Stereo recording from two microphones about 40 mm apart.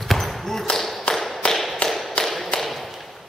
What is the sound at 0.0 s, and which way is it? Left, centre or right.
Basketball bounce, centre.